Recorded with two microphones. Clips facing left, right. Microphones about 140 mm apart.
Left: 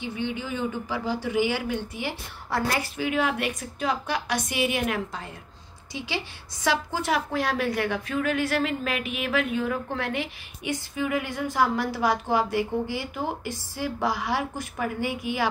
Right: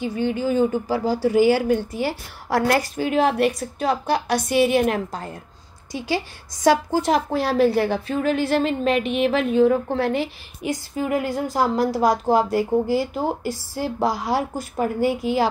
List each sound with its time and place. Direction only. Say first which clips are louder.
0.0 s a woman's voice: right 8 dB; 40° right (ahead or behind)
2.5 s a woman's voice: right 7 dB; 60° right (ahead or behind)
2.8 s a woman's voice: right 6 dB; 40° right (ahead or behind)